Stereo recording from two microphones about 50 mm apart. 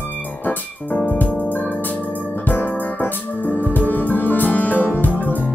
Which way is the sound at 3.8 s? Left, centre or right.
Left.